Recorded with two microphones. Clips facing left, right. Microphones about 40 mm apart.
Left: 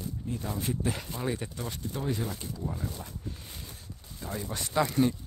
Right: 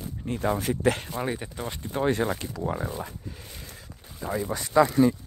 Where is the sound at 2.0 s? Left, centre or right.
Right.